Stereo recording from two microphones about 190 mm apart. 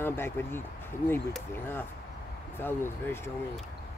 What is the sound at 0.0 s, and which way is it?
Speech, 10° left (ahead or behind).